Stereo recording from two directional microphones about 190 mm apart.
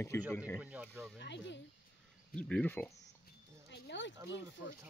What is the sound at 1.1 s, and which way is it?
Speech, 65° left (ahead or behind).